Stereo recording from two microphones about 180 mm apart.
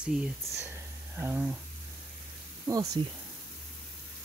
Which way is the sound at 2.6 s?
20° right (ahead or behind).